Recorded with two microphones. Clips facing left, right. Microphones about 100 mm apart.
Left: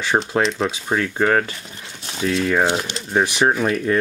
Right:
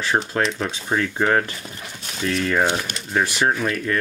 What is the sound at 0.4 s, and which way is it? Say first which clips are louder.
Speech: left 3 dB; centre (ahead or behind).